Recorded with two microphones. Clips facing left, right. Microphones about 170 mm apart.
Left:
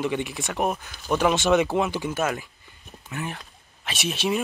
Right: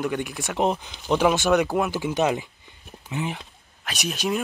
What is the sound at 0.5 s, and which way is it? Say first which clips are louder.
Speech: right 3 dB; 20° right (ahead or behind).